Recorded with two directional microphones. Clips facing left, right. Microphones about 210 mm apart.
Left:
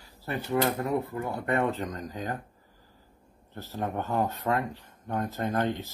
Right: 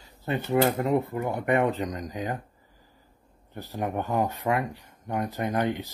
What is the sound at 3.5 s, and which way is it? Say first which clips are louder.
Speech: right 2 dB; 15° right (ahead or behind).